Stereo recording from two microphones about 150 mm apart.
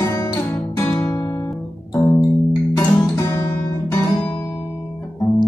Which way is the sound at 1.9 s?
20° left (ahead or behind).